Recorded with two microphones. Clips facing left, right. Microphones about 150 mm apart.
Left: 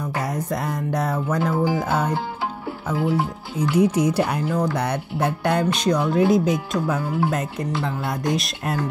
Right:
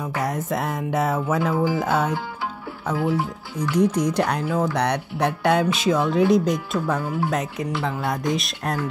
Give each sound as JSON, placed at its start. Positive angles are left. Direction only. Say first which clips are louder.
{"t": 0.0, "sound": "speech", "louder": "even", "side_deg": 0}
{"t": 3.0, "sound": "speech", "louder": "left 1 dB", "side_deg": 25}
{"t": 3.5, "sound": "speech", "louder": "left 2 dB", "side_deg": 10}